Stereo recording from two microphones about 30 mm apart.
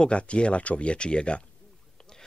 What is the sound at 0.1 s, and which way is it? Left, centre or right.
Speech, left.